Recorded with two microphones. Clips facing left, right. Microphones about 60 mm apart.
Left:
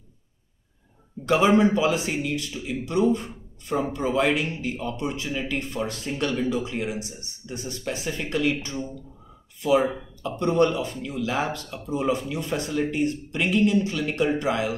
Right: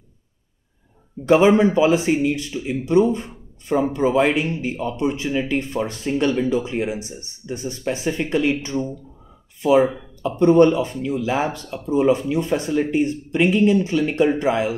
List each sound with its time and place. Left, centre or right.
1.2 s speech: right
10.2 s speech: right